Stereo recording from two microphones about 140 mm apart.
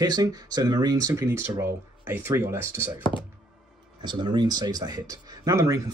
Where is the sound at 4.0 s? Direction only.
30° right (ahead or behind).